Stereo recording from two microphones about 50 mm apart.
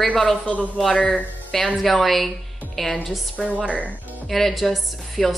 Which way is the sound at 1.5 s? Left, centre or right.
Centre.